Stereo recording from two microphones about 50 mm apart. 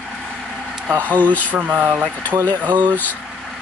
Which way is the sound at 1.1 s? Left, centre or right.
Left.